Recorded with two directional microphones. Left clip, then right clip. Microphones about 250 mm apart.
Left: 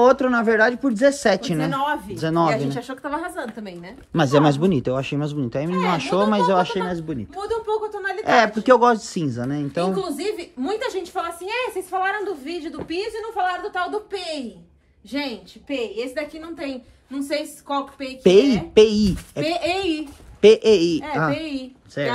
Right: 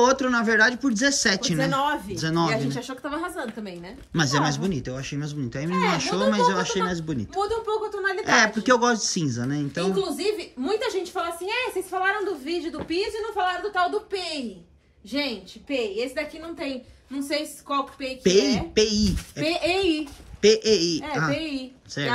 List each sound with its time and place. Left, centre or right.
0.0 s speech: centre